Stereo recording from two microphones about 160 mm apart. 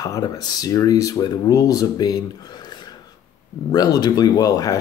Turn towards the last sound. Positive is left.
turn(degrees=20)  # may be behind; listen again after turning